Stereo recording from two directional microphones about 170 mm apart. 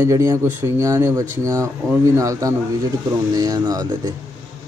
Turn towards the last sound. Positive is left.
turn(degrees=-20)  # may be behind; listen again after turning